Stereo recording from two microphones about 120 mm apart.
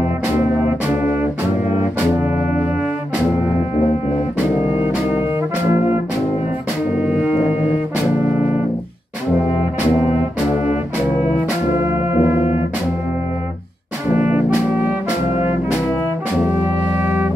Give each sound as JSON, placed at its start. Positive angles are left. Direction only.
{"t": 7.0, "sound": "music", "side_deg": -10}
{"t": 11.8, "sound": "brass instrument", "side_deg": -20}
{"t": 14.1, "sound": "trumpet", "side_deg": -15}
{"t": 17.0, "sound": "music", "side_deg": -15}